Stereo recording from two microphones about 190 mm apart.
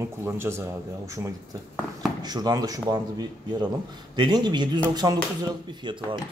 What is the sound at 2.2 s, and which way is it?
Speech, 20° right (ahead or behind).